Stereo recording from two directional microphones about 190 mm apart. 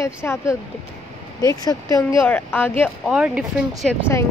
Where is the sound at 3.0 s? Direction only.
5° right (ahead or behind).